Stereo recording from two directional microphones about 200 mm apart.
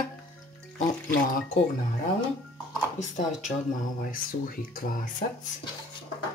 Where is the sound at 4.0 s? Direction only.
45° left (ahead or behind).